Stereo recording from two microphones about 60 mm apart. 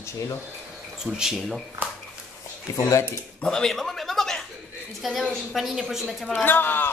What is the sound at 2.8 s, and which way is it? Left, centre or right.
Speech, left.